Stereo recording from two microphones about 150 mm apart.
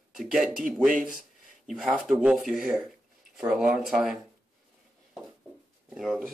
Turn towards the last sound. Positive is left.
turn(degrees=0)  # may be behind; listen again after turning